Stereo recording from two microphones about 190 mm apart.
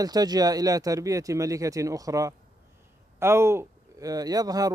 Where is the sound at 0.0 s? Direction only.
20° right (ahead or behind).